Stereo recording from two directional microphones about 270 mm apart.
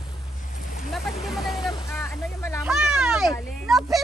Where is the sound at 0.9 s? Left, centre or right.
Centre.